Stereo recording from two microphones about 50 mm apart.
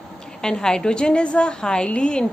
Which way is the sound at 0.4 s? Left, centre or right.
Centre.